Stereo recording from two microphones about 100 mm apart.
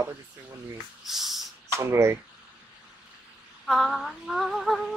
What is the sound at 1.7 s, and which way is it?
Speech, 25° right (ahead or behind).